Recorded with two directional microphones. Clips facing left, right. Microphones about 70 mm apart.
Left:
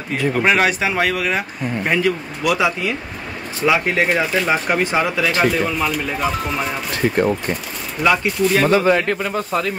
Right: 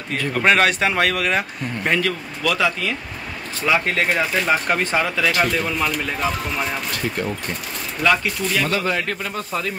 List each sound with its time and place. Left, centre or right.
0.1 s speech: centre
1.9 s speech: centre
4.1 s speech: centre
7.2 s speech: left
8.0 s speech: centre